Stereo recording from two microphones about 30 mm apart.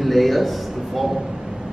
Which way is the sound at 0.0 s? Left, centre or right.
Centre.